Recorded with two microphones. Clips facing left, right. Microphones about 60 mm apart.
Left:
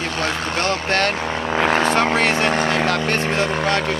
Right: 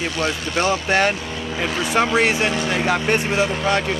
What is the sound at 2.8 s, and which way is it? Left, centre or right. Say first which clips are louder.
Speech: even; centre.